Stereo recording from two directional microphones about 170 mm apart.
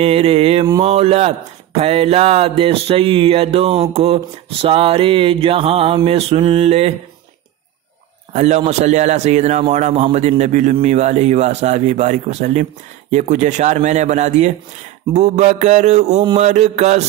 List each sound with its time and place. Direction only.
0.0 s mantra: 35° right (ahead or behind)
8.3 s a man's voice: 40° right (ahead or behind)
15.1 s mantra: 40° right (ahead or behind)